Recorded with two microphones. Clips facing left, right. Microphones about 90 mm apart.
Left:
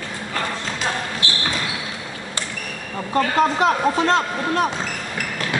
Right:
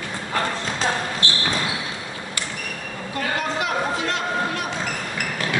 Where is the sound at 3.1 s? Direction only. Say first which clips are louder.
Left 8 dB; 35° left (ahead or behind).